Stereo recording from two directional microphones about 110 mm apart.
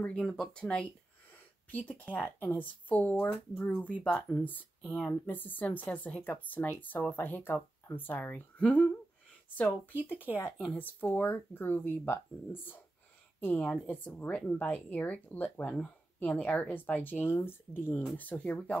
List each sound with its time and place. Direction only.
0.0 s speech: 10° left (ahead or behind)
5.2 s speech: 15° left (ahead or behind)
10.3 s speech: 15° left (ahead or behind)
13.4 s speech: 15° left (ahead or behind)